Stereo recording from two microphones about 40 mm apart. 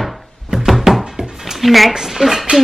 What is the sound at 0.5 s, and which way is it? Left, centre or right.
Music, centre.